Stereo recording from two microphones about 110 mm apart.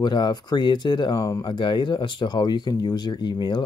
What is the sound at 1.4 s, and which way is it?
Speech, 45° left (ahead or behind).